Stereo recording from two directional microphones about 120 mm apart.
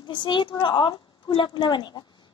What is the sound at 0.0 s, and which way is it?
A woman's voice, 40° left (ahead or behind).